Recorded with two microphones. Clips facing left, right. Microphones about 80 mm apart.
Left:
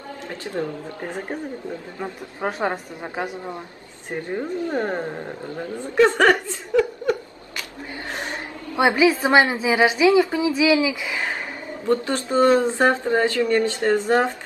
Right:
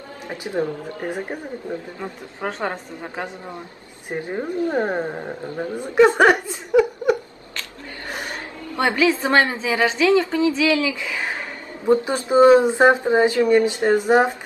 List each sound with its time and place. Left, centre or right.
0.3 s speech: centre
2.4 s a woman's voice: centre
4.1 s speech: centre
8.7 s a woman's voice: centre
11.9 s speech: centre